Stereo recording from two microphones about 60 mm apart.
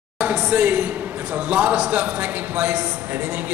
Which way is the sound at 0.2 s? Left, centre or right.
Right.